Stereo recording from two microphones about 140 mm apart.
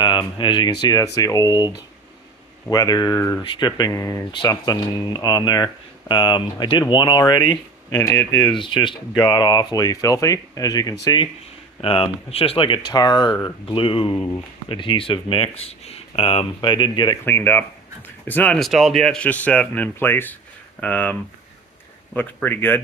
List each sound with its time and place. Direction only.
0.0 s speech: 35° left (ahead or behind)
8.5 s speech: 35° left (ahead or behind)
11.8 s speech: 40° left (ahead or behind)
17.2 s speech: 15° left (ahead or behind)
18.6 s speech: 5° right (ahead or behind); by 22.8 s 15° left (ahead or behind)